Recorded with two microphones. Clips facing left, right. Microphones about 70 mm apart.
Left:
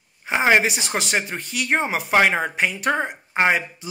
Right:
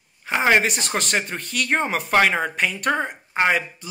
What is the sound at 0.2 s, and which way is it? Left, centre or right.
Speech, centre.